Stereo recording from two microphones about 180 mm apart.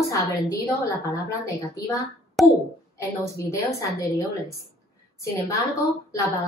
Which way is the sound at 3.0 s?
15° left (ahead or behind).